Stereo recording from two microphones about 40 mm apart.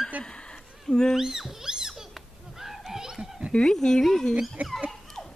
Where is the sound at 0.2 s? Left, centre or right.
Centre.